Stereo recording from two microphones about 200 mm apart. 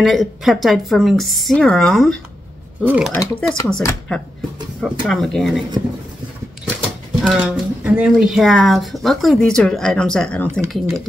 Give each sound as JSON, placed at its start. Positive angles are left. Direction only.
{"t": 0.0, "sound": "speech", "side_deg": 0}
{"t": 2.8, "sound": "speech", "side_deg": -10}
{"t": 3.1, "sound": "speech", "side_deg": 10}
{"t": 7.2, "sound": "speech", "side_deg": -5}